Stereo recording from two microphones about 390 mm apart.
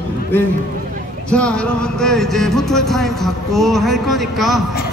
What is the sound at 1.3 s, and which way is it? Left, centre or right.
Music, centre.